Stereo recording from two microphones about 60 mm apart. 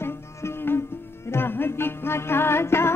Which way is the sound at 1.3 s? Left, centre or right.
Left.